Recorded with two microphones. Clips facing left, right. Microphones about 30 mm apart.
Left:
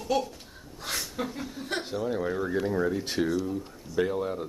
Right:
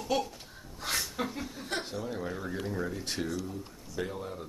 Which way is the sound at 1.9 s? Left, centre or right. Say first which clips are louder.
Left 7 dB; centre.